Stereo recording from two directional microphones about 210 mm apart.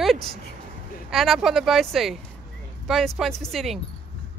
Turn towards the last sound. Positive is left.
turn(degrees=0)  # may be behind; listen again after turning